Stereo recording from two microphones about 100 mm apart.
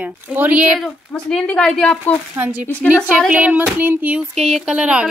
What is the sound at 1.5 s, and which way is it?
Speech, 5° left (ahead or behind).